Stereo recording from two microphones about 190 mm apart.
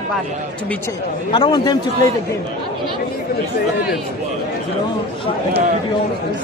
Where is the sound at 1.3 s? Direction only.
25° left (ahead or behind).